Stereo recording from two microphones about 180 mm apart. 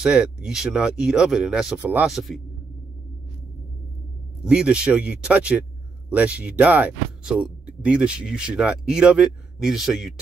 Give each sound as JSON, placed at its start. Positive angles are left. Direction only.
{"t": 0.0, "sound": "speech", "side_deg": -5}
{"t": 4.5, "sound": "speech", "side_deg": -5}